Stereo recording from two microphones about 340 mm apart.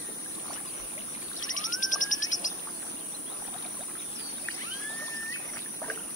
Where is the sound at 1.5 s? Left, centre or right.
Left.